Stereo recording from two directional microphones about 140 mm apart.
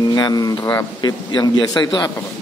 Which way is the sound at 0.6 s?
15° left (ahead or behind).